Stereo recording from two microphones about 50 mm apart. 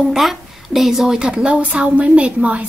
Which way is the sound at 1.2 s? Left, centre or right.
Centre.